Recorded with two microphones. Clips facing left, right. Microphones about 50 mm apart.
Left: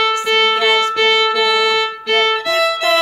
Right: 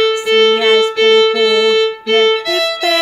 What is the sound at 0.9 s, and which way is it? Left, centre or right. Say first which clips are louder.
Violin: right 4 dB; centre.